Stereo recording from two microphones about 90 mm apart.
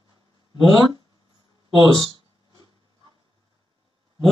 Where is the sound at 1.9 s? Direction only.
50° right (ahead or behind).